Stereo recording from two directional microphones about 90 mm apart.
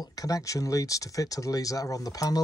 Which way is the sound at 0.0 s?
45° left (ahead or behind).